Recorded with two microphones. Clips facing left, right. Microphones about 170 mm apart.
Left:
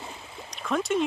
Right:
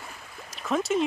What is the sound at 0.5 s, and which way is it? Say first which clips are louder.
Speech: right 1 dB; centre (ahead or behind).